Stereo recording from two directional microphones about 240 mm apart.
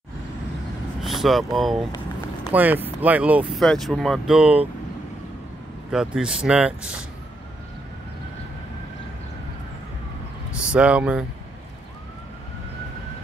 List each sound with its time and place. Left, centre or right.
1.0 s speech: centre
5.9 s speech: centre
10.5 s speech: centre